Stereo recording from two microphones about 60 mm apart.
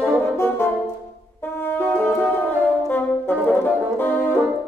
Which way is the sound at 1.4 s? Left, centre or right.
Left.